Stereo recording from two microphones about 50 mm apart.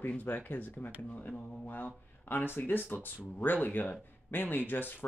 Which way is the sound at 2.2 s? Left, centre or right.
Left.